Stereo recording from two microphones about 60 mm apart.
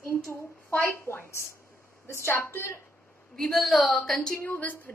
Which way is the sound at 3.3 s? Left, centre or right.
Centre.